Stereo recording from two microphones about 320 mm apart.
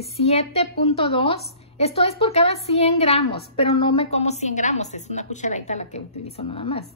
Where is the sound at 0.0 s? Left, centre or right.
Centre.